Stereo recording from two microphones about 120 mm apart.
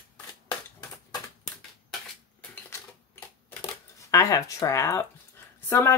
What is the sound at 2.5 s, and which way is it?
Typewriter, 15° left (ahead or behind).